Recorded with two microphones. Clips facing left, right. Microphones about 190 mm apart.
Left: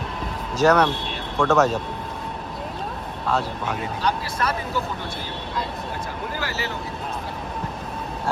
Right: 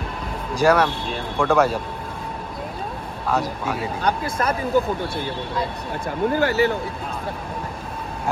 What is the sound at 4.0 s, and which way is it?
Speech, 55° right (ahead or behind).